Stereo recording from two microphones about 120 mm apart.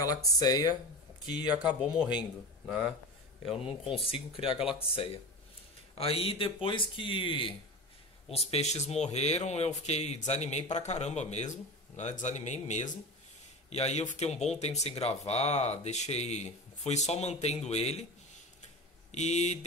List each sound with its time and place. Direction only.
0.0 s speech: 30° left (ahead or behind)
1.5 s speech: 10° right (ahead or behind)
3.9 s speech: 50° left (ahead or behind)
8.3 s speech: 55° left (ahead or behind); by 12.9 s 85° left
13.7 s speech: 65° left (ahead or behind)
19.1 s speech: 70° left (ahead or behind)